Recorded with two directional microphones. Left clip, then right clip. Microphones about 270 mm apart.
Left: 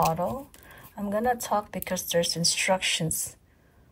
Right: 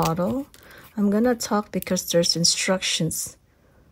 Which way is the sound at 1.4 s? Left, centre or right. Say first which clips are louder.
Right 3 dB; centre.